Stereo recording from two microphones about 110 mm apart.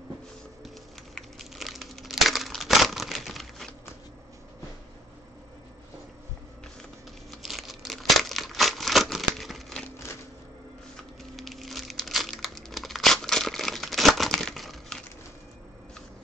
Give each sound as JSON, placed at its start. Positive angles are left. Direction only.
{"t": 1.1, "sound": "crumpling", "side_deg": 0}
{"t": 7.2, "sound": "crumpling", "side_deg": 0}
{"t": 11.3, "sound": "crumpling", "side_deg": 0}